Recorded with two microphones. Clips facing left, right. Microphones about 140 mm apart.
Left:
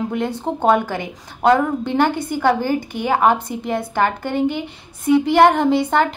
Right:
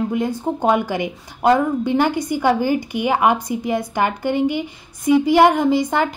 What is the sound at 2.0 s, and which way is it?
Speech, 55° left (ahead or behind).